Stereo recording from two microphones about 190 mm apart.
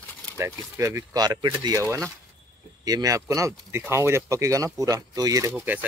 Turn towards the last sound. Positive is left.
turn(degrees=-10)  # may be behind; listen again after turning